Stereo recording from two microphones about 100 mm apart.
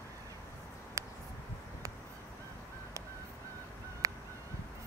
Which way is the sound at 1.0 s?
30° right (ahead or behind).